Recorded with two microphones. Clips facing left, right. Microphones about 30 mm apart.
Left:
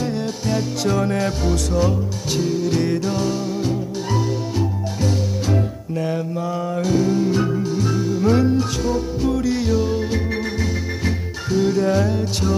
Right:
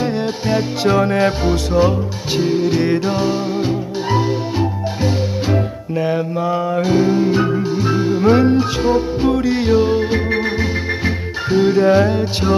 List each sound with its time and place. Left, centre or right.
0.0 s music: right
11.5 s music: right